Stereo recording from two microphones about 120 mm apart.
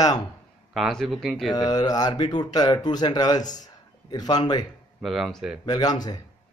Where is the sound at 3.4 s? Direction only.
90° left.